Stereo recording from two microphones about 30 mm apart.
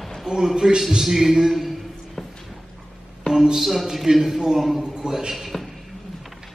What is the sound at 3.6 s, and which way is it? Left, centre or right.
A man's voice, centre.